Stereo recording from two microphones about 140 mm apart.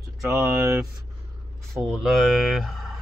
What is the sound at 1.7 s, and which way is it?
Speech, centre (ahead or behind).